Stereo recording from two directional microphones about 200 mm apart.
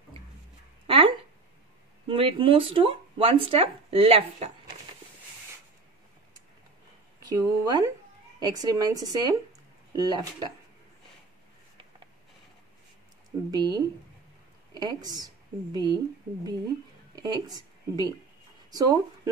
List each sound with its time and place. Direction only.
0.8 s a sound: 25° right (ahead or behind)
2.0 s speech: 25° right (ahead or behind)
7.2 s speech: 20° right (ahead or behind)
13.5 s a woman's voice: 20° right (ahead or behind)
17.1 s speech: 20° right (ahead or behind)